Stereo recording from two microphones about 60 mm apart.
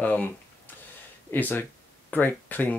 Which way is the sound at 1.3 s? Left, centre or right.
Left.